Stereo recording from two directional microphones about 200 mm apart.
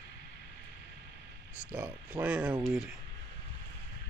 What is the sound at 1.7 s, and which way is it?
Speech, 10° right (ahead or behind).